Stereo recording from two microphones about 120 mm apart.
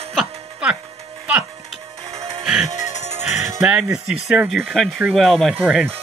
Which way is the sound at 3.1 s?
15° right (ahead or behind).